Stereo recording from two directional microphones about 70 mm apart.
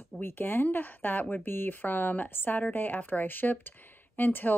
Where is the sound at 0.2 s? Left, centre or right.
Left.